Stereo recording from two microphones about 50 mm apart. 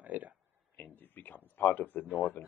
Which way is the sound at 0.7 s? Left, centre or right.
Left.